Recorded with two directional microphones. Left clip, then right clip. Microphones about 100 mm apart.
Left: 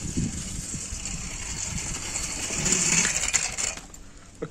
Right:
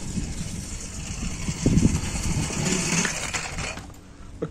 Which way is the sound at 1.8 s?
Centre (ahead or behind).